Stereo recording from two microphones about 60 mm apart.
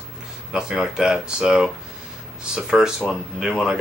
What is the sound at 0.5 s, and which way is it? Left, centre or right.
Speech, centre.